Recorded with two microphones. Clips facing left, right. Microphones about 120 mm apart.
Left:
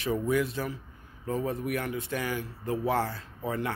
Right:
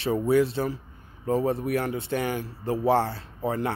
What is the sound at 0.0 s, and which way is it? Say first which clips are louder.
Speech: right 5 dB; 30° right (ahead or behind).